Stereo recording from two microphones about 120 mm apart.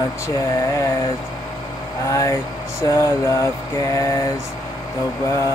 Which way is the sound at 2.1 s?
25° left (ahead or behind).